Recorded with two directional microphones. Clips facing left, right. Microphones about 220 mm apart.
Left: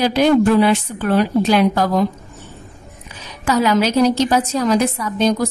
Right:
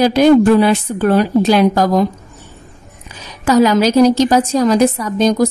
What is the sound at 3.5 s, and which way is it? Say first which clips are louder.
A woman's voice: right 5 dB; 40° right (ahead or behind).